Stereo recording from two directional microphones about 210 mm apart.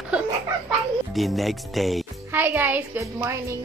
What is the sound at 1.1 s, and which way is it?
A woman's voice, centre (ahead or behind).